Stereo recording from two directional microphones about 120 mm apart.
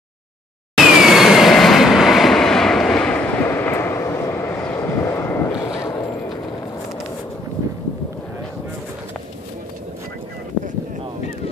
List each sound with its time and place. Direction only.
0.7 s train: 5° right (ahead or behind)
3.4 s vehicle: 20° left (ahead or behind)